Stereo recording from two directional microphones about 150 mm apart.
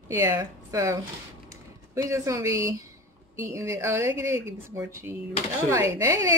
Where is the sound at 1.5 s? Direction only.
20° right (ahead or behind).